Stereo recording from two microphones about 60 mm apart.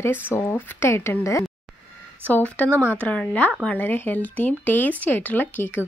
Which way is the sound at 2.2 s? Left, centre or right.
Left.